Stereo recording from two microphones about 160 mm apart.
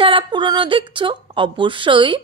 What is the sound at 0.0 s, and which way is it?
A woman's voice, 30° right (ahead or behind).